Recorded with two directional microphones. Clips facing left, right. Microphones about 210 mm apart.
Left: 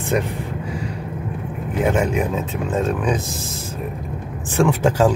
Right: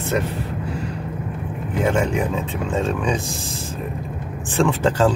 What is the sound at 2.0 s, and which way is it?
Speech, 5° left (ahead or behind).